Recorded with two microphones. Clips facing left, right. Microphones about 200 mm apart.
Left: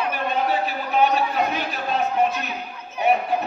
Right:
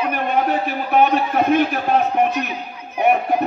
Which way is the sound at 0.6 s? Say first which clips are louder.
Right 4 dB; 55° right (ahead or behind).